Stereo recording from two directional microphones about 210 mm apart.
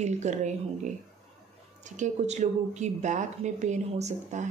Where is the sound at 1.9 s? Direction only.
35° right (ahead or behind).